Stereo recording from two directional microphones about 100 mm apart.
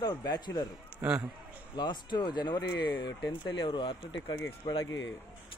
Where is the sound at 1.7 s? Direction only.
45° left (ahead or behind).